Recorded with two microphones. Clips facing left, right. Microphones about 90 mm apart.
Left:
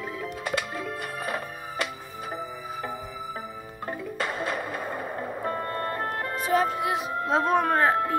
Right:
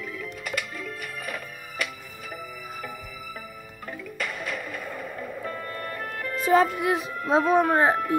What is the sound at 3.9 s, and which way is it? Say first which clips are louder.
Music: left 3 dB; 35° left (ahead or behind).